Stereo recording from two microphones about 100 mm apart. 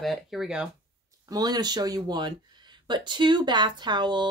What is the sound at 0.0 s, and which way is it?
Speech, centre (ahead or behind).